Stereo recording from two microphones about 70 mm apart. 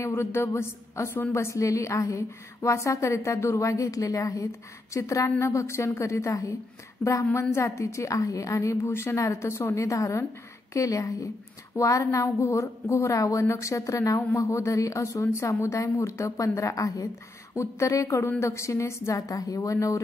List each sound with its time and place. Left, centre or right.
0.0 s a woman's voice: left
7.5 s a woman's voice: left